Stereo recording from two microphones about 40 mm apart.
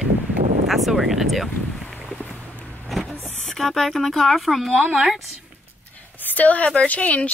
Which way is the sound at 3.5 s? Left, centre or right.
Centre.